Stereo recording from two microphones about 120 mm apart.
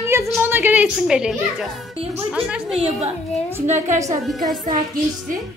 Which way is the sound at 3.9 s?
25° right (ahead or behind).